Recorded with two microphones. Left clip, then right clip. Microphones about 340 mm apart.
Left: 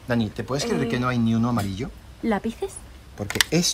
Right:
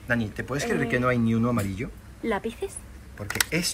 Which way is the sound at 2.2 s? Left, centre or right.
Left.